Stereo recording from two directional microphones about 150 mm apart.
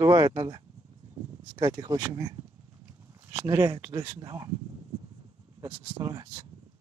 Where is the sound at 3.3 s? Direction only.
15° right (ahead or behind).